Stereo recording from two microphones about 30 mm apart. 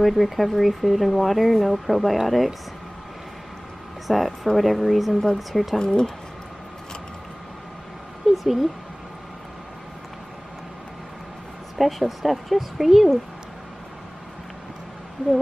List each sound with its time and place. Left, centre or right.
0.0 s speech: centre
4.1 s speech: centre
5.8 s speech: left
8.2 s a sound: centre
11.8 s speech: centre